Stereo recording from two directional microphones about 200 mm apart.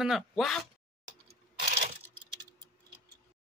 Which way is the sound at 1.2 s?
35° right (ahead or behind).